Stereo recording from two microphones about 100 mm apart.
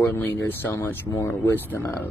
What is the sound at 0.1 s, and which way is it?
Speech, 20° left (ahead or behind).